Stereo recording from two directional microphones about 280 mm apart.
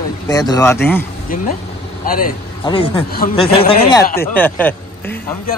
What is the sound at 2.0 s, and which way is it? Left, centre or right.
Speech, left.